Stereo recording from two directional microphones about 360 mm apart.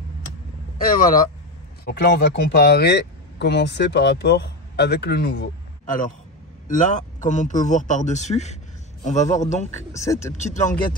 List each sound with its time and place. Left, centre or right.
1.9 s speech: left